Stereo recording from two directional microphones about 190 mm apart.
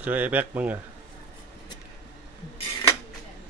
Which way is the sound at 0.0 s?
10° right (ahead or behind).